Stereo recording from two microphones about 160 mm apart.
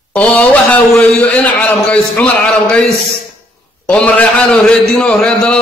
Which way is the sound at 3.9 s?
10° left (ahead or behind).